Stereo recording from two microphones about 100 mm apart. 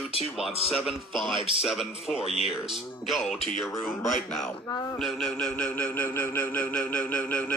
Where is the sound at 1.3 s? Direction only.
65° right (ahead or behind).